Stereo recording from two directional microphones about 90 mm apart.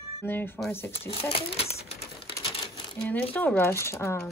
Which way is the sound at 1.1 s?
90° left.